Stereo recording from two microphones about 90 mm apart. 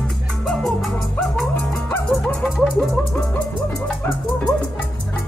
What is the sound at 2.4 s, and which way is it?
Speech, 5° left (ahead or behind).